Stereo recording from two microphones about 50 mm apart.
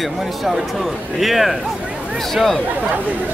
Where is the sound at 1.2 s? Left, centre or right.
Centre.